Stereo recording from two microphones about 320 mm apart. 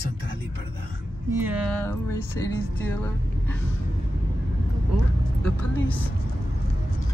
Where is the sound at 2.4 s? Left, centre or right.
Centre.